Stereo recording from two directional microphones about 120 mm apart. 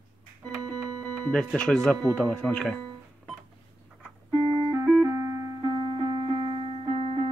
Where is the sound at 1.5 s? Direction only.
5° left (ahead or behind).